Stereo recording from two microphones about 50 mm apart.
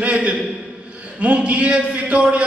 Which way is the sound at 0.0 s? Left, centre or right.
Right.